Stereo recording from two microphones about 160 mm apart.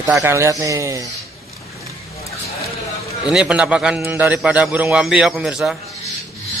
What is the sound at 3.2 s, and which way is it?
A man's voice, 5° right (ahead or behind).